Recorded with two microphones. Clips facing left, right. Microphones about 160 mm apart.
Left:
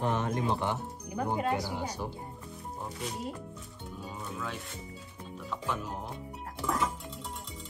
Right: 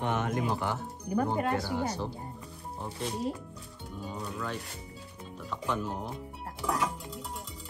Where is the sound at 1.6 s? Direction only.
15° left (ahead or behind).